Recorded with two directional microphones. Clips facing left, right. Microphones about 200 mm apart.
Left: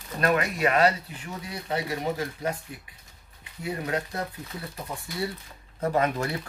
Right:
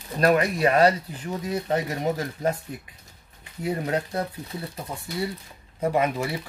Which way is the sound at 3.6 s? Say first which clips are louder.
Right 4 dB; 35° right (ahead or behind).